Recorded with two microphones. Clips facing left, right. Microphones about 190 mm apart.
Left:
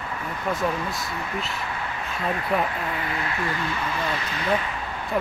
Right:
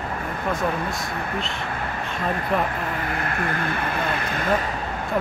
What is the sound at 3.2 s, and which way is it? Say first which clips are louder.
Speech: right 2 dB; 55° right (ahead or behind).